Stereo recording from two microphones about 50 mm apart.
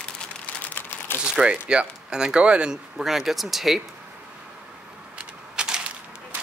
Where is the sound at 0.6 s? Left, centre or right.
Left.